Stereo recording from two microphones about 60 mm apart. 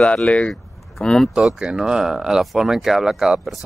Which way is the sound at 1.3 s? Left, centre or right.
Centre.